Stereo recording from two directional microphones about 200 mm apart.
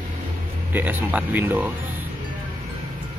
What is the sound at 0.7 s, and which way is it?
Speech, 10° right (ahead or behind).